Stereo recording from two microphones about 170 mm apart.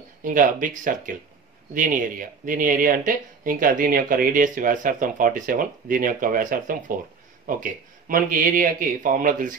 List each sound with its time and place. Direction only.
0.2 s speech: 50° right (ahead or behind)